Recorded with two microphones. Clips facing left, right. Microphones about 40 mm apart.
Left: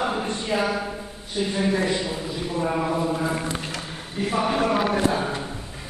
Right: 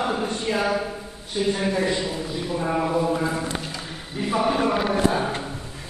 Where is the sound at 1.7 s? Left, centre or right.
Centre.